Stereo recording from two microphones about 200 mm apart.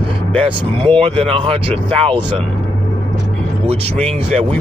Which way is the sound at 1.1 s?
30° right (ahead or behind).